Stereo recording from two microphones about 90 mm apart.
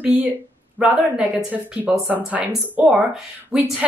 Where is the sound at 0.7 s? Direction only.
10° right (ahead or behind).